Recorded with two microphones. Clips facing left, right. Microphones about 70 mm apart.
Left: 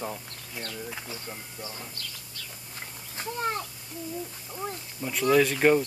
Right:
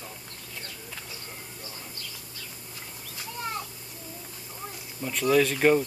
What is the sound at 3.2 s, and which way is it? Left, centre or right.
Speech, left.